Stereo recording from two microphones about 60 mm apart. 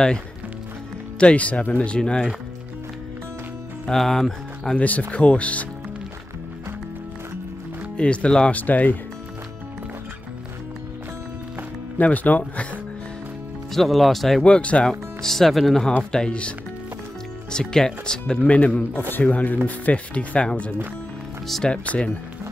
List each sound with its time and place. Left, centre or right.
1.2 s speech: left
2.0 s speech: centre
3.8 s speech: centre
4.7 s speech: left
8.0 s speech: centre
8.5 s speech: left
12.0 s speech: left
13.7 s speech: centre
14.4 s speech: centre
14.9 s speech: centre